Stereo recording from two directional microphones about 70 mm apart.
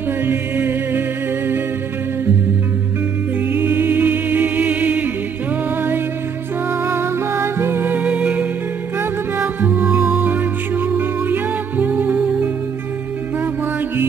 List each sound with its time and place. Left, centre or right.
0.2 s music: right
3.5 s music: right
6.8 s music: right; by 8.5 s centre
9.4 s music: right